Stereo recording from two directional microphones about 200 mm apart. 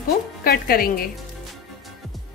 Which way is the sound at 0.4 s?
50° left (ahead or behind).